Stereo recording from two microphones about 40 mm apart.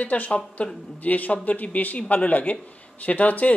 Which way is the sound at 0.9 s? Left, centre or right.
Left.